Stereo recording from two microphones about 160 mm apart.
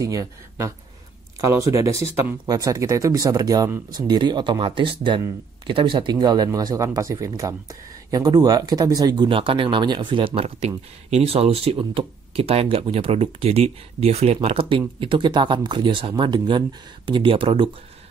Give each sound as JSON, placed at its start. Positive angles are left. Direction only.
{"t": 0.0, "sound": "speech", "side_deg": -20}